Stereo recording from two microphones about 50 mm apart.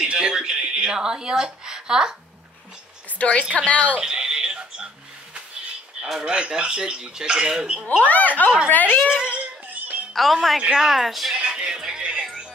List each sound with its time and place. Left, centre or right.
0.0 s a sound: centre
3.2 s a woman's voice: left
4.0 s a sound: centre
6.2 s speech: centre
8.0 s speech: left
9.0 s speech: centre
10.1 s speech: centre
11.3 s music: centre